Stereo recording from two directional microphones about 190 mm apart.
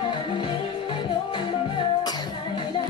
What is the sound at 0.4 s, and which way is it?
Music, 25° left (ahead or behind).